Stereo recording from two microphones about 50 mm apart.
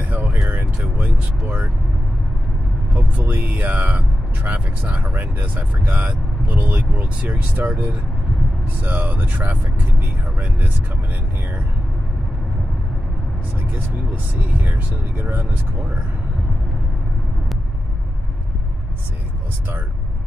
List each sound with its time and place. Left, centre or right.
0.1 s vehicle: right
0.9 s a sound: right
2.9 s speech: right
14.4 s speech: right